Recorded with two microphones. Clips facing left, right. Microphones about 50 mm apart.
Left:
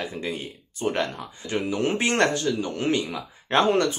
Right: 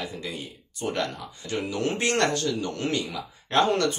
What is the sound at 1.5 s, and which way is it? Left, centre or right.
Speech, left.